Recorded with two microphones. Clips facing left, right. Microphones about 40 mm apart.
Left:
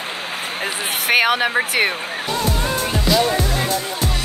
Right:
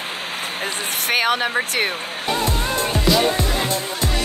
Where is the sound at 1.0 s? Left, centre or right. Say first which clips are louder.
Left 3 dB; centre.